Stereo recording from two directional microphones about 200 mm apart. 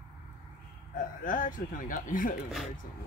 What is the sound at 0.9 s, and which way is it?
Speech, 45° left (ahead or behind).